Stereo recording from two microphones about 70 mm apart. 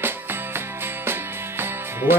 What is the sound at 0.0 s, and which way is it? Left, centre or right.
Music, right.